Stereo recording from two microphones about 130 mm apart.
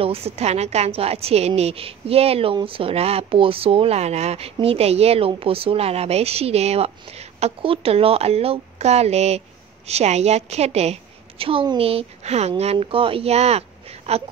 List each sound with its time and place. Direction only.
0.0 s a woman's voice: 50° right (ahead or behind)
12.7 s a woman's voice: 45° right (ahead or behind)